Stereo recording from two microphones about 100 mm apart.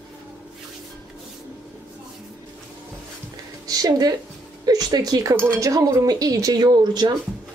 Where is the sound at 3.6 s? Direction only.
40° right (ahead or behind).